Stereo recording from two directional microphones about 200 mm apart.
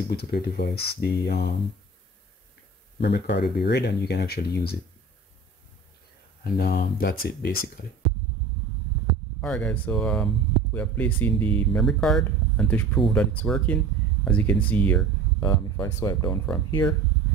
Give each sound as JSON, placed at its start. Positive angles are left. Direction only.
{"t": 0.1, "sound": "speech", "side_deg": 50}
{"t": 3.0, "sound": "speech", "side_deg": 55}
{"t": 6.4, "sound": "speech", "side_deg": 50}
{"t": 9.4, "sound": "speech", "side_deg": 5}